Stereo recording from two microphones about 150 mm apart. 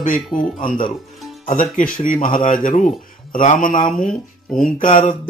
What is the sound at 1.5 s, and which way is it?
Speech, 60° left (ahead or behind).